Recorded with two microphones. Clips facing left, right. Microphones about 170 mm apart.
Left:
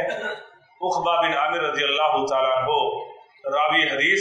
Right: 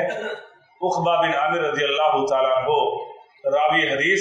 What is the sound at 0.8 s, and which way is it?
A man's voice, 45° right (ahead or behind).